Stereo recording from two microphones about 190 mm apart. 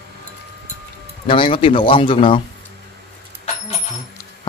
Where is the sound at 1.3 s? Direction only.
30° left (ahead or behind).